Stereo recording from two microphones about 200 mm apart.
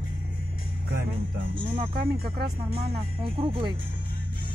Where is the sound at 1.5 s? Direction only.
25° right (ahead or behind).